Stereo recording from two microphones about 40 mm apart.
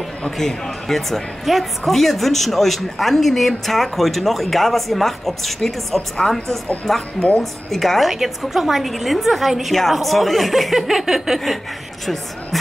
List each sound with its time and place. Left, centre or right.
0.4 s a woman's voice: centre
8.1 s speech: centre